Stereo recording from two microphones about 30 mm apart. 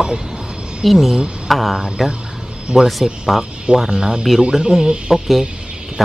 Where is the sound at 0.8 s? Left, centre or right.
Centre.